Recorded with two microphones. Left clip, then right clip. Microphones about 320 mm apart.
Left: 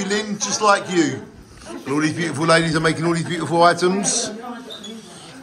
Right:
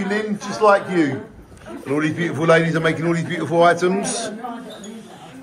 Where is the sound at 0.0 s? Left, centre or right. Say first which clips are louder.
Even; centre.